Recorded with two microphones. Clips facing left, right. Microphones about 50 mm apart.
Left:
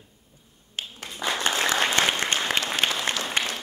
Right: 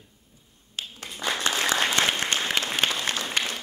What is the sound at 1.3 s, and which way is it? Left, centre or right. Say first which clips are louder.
Applause: left 1 dB; left.